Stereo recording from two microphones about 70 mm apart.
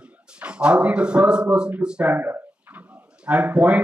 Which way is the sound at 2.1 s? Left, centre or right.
Right.